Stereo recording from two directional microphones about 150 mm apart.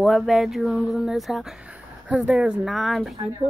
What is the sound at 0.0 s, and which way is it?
Speech, centre (ahead or behind).